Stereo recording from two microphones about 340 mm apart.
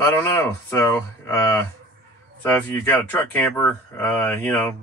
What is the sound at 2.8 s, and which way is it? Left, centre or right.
Speech, centre.